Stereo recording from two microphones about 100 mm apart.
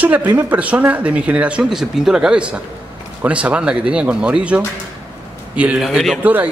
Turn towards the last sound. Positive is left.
turn(degrees=-15)  # may be behind; listen again after turning